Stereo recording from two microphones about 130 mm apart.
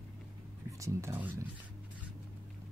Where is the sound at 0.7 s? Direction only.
25° right (ahead or behind).